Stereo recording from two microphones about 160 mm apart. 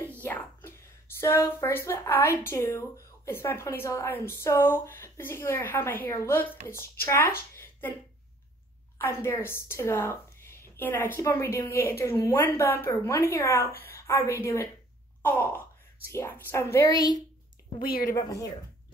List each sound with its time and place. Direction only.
0.2 s a sound: 10° left (ahead or behind)
2.4 s speech: 15° left (ahead or behind)
7.5 s a sound: 15° left (ahead or behind)
8.9 s a woman's voice: 15° left (ahead or behind)
17.8 s a woman's voice: 65° left (ahead or behind)
18.1 s speech: 20° left (ahead or behind)